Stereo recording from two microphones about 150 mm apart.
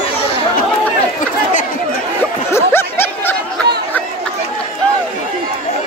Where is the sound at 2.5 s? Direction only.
15° left (ahead or behind).